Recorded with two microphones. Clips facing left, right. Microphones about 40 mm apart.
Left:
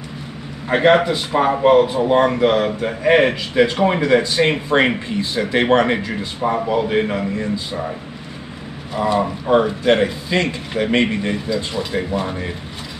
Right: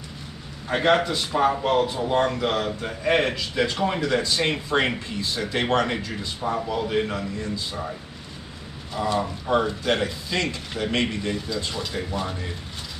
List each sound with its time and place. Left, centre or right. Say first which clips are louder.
0.7 s speech: left 7 dB; left
8.9 s speech: left 6 dB; left